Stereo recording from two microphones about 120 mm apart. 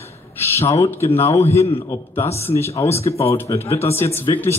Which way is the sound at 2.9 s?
55° left (ahead or behind).